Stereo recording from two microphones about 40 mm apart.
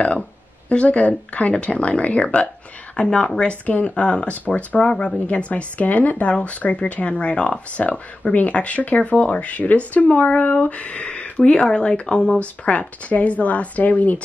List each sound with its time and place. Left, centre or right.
0.7 s speech: left
3.0 s speech: left